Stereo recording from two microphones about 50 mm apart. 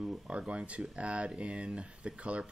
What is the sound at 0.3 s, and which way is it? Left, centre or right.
Speech, right.